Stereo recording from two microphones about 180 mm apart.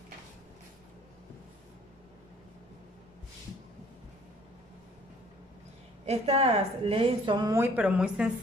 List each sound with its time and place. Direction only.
6.0 s a woman's voice: 35° right (ahead or behind)
7.5 s speech: 10° right (ahead or behind)